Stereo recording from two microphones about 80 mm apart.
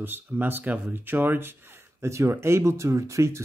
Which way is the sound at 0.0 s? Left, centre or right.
Right.